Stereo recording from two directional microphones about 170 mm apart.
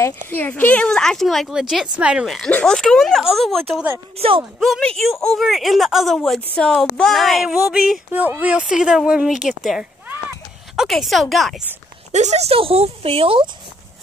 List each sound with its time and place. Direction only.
0.3 s a woman's voice: 10° left (ahead or behind)
12.1 s a woman's voice: 45° right (ahead or behind)